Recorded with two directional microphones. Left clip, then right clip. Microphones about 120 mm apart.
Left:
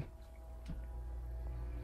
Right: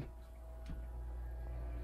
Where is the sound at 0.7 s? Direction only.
15° left (ahead or behind).